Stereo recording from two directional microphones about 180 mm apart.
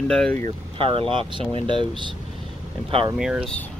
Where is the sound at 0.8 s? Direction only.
30° right (ahead or behind).